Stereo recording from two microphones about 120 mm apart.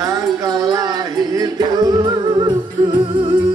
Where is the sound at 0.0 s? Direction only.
30° right (ahead or behind).